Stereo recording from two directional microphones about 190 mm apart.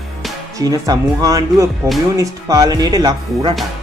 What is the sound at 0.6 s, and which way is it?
Speech, 20° right (ahead or behind).